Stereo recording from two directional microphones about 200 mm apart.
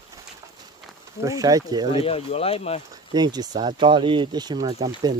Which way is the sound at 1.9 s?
30° left (ahead or behind).